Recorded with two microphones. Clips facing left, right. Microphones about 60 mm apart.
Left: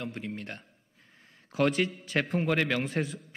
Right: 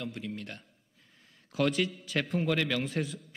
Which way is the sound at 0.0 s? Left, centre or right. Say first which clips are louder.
Left 1 dB; left.